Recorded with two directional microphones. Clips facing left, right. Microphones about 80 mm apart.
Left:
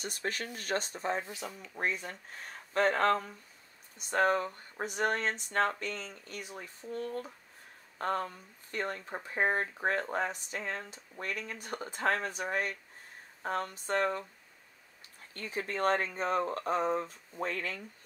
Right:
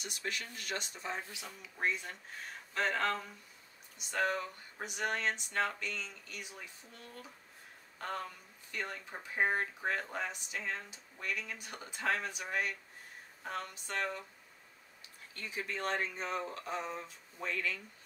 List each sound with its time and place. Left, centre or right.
0.0 s speech: left
15.3 s speech: left